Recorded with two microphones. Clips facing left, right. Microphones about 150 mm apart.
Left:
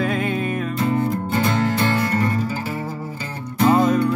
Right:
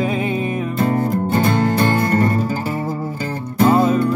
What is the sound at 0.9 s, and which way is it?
Music, 45° right (ahead or behind).